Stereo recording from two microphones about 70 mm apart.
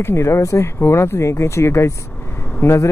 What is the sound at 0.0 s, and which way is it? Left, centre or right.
Speech, left.